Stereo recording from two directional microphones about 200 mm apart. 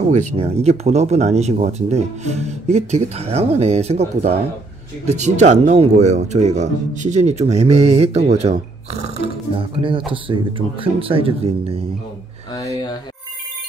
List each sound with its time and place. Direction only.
0.1 s speech: 35° right (ahead or behind)